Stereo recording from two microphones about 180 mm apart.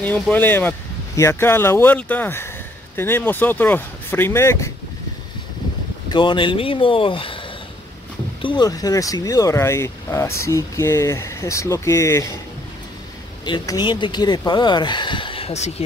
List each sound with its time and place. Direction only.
0.0 s speech: 10° left (ahead or behind)
6.0 s speech: 25° left (ahead or behind)
8.4 s speech: 25° left (ahead or behind)
13.5 s speech: 25° left (ahead or behind)